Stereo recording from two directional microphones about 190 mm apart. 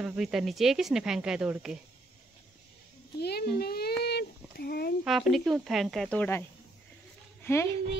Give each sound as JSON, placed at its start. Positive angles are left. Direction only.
{"t": 0.0, "sound": "speech", "side_deg": 0}
{"t": 3.2, "sound": "speech", "side_deg": 55}
{"t": 4.0, "sound": "a sound", "side_deg": 55}
{"t": 5.0, "sound": "speech", "side_deg": 0}
{"t": 7.4, "sound": "speech", "side_deg": 15}